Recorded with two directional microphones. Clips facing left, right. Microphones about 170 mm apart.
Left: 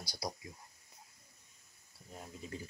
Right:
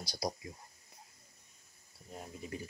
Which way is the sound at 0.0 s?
20° right (ahead or behind).